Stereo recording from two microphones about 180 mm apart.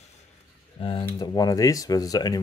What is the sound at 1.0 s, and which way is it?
Speech, 20° left (ahead or behind).